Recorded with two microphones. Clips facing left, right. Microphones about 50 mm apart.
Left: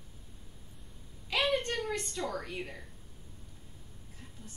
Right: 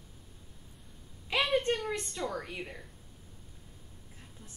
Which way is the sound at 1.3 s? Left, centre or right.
Centre.